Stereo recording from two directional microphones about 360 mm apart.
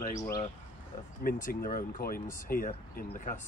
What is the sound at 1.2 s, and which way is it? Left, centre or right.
Speech, left.